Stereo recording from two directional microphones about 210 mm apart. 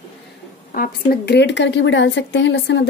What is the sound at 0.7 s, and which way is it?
A woman's voice, 40° left (ahead or behind).